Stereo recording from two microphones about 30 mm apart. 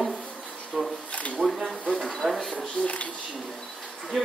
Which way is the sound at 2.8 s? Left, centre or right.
Left.